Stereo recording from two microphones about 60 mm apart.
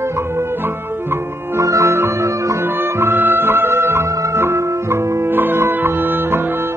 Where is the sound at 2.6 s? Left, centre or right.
Right.